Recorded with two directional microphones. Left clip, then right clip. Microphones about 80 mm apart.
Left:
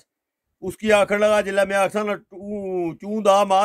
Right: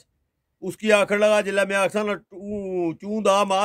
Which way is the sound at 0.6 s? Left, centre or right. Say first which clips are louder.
Left 1 dB; right.